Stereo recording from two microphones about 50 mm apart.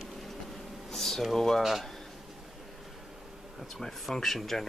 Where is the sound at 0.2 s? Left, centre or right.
Centre.